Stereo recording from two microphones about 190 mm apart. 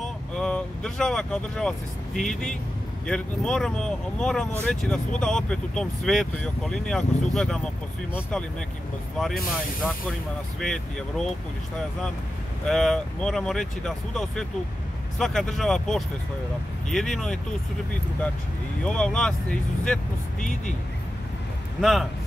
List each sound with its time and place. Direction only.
0.0 s speech: 5° left (ahead or behind)
12.6 s speech: centre (ahead or behind)
18.9 s speech: 5° left (ahead or behind)
20.3 s speech: 40° left (ahead or behind)